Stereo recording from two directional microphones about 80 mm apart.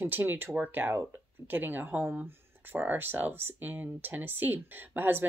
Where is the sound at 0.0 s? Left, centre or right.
Right.